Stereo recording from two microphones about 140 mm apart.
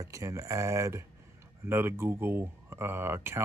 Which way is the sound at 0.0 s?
20° right (ahead or behind).